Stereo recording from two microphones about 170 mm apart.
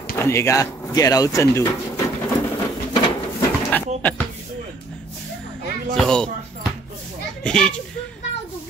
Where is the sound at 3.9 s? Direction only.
10° left (ahead or behind).